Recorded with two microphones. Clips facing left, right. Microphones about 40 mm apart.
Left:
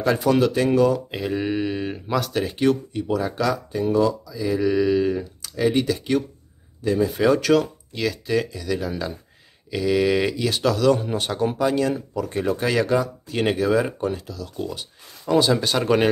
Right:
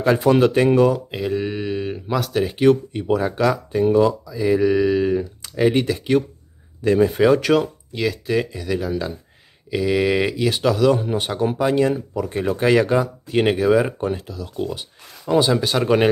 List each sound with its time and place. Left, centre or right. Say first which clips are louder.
0.0 s speech: right 3 dB; right
0.9 s speech: right 2 dB; centre
2.7 s speech: right 4 dB; right; by 5.2 s centre
5.4 s speech: right 2 dB; right
6.8 s speech: right 5 dB; right
7.2 s speech: right 2 dB; centre